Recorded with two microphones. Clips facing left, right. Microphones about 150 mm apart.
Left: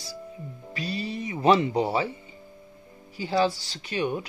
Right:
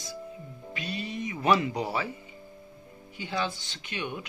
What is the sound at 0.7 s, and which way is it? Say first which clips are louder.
Music: left 3 dB; 35° left (ahead or behind).